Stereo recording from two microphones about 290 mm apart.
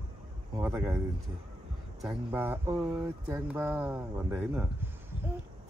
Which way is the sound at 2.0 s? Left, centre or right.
Centre.